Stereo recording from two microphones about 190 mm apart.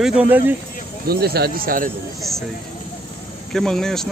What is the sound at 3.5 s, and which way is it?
Speech, centre (ahead or behind).